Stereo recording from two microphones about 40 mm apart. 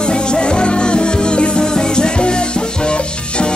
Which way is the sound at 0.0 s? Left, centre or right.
Left.